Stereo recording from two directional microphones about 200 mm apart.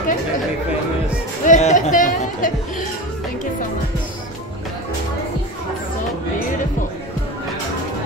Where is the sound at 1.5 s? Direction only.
35° left (ahead or behind).